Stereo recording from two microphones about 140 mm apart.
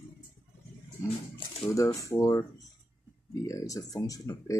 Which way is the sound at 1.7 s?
25° left (ahead or behind).